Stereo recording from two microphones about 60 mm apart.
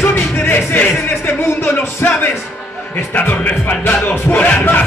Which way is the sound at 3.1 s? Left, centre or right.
Left.